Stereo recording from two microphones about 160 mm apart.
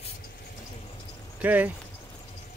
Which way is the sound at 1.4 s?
10° right (ahead or behind).